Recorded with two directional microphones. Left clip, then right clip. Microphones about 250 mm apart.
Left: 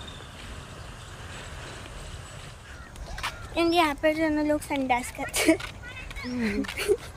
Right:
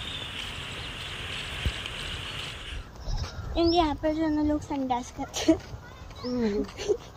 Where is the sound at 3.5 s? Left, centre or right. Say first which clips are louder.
Left 1 dB; centre.